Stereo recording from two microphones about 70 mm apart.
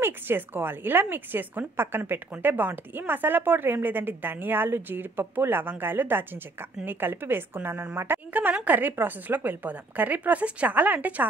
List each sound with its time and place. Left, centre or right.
0.0 s a woman's voice: right